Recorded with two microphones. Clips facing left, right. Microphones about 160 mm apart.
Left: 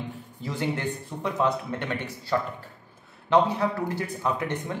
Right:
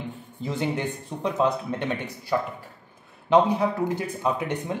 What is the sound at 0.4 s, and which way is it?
Speech, 20° right (ahead or behind).